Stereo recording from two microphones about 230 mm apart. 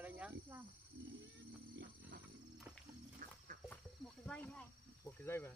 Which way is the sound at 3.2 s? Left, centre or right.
Right.